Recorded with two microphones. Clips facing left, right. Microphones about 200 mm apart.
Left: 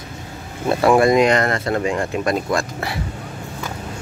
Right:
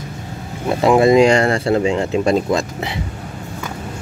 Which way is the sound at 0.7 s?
20° right (ahead or behind).